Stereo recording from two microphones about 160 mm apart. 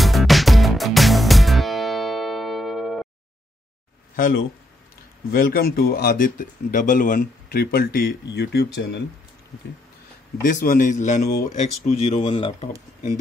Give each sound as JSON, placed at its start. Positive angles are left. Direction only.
{"t": 0.0, "sound": "music", "side_deg": 0}
{"t": 5.3, "sound": "speech", "side_deg": 70}
{"t": 10.4, "sound": "speech", "side_deg": 60}